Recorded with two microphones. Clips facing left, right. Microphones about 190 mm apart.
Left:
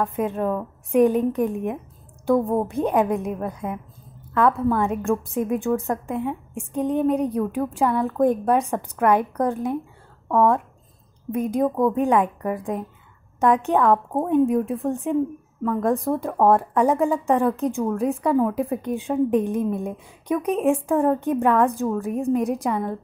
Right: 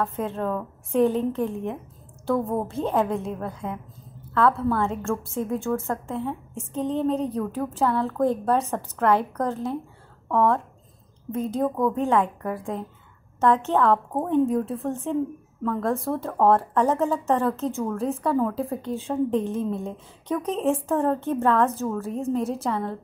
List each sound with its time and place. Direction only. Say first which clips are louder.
0.0 s a woman's voice: left 3 dB; 15° left (ahead or behind)